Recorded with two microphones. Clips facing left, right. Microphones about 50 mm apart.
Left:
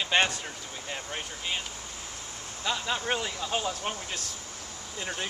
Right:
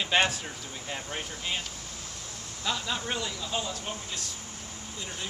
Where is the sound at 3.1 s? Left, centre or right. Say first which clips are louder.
Left 3 dB; left.